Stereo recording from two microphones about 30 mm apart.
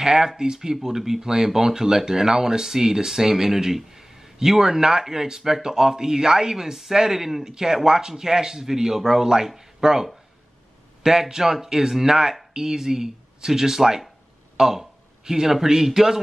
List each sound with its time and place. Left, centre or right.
0.0 s speech: right
14.6 s a sound: centre
15.5 s speech: centre